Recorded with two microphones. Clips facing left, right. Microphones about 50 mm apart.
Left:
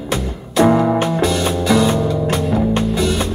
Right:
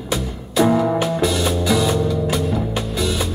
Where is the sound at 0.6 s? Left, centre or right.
Centre.